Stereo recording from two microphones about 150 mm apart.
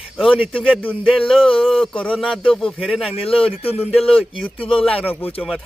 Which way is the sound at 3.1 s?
40° left (ahead or behind).